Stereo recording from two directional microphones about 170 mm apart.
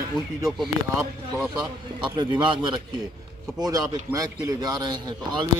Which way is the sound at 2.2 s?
25° right (ahead or behind).